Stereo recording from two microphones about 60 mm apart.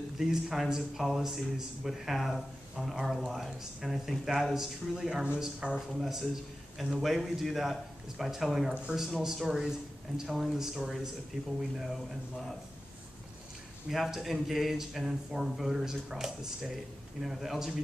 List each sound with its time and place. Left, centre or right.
0.2 s a man's voice: centre
13.8 s speech: centre